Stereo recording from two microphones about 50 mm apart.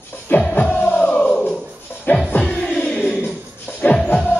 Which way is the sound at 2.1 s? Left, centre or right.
Left.